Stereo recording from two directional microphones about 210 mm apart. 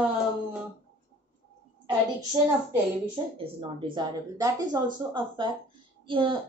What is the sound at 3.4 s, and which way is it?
Speech, 25° right (ahead or behind).